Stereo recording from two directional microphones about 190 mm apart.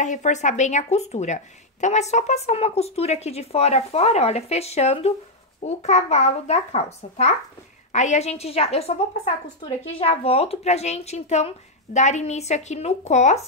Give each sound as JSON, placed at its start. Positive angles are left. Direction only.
{"t": 0.0, "sound": "a woman's voice", "side_deg": 40}